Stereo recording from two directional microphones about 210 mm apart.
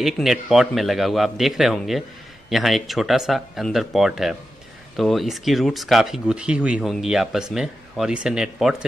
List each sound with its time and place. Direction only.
0.0 s speech: centre (ahead or behind)